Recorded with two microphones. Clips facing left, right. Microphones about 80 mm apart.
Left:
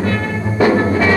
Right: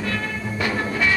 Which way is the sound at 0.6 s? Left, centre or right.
Left.